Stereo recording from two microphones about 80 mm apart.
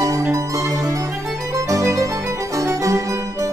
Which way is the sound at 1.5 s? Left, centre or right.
Right.